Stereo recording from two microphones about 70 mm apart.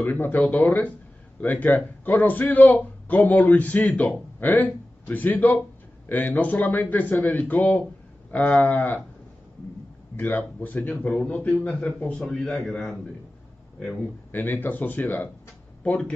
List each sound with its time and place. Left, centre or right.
0.0 s a man's voice: left
10.1 s a man's voice: left; by 12.9 s centre
14.3 s a man's voice: left